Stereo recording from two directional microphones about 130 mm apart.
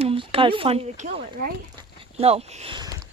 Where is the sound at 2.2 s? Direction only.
55° right (ahead or behind).